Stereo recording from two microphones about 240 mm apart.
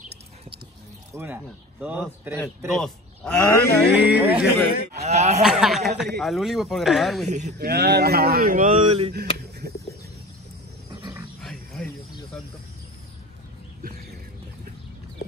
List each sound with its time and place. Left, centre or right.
1.1 s speech: centre
3.9 s speech: centre
5.0 s speech: right
5.4 s speech: centre
7.2 s speech: right
7.5 s speech: right
9.6 s a sound: right
11.4 s a sound: centre